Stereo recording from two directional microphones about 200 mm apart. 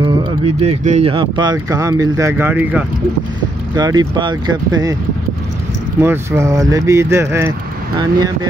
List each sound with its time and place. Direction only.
0.0 s speech: 25° right (ahead or behind); by 2.8 s 10° right (ahead or behind)
3.7 s speech: 20° right (ahead or behind)
5.9 s speech: 10° right (ahead or behind)